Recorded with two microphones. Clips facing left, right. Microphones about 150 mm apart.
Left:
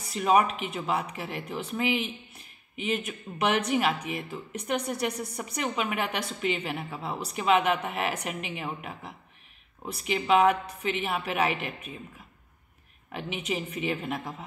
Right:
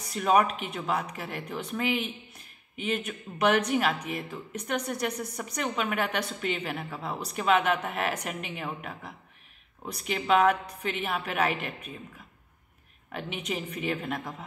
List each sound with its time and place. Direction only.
0.1 s a woman's voice: 5° left (ahead or behind)
13.1 s speech: 5° left (ahead or behind)